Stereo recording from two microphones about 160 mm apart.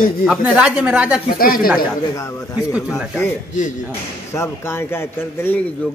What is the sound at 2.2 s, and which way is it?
Speech, 20° left (ahead or behind).